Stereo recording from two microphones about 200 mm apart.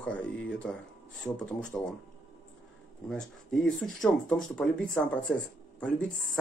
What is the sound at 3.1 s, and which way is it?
Speech, 5° left (ahead or behind).